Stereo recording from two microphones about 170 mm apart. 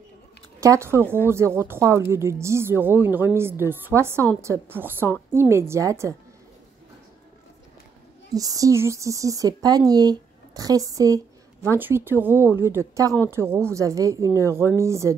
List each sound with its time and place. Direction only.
0.6 s speech: 15° right (ahead or behind)
8.3 s speech: 20° right (ahead or behind)